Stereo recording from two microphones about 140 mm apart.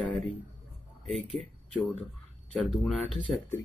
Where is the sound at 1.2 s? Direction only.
55° right (ahead or behind).